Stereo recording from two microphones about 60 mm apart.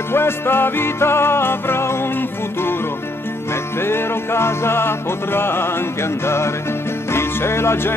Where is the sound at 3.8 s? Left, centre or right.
Left.